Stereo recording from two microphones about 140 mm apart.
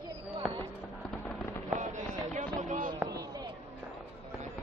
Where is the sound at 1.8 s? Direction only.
60° right (ahead or behind).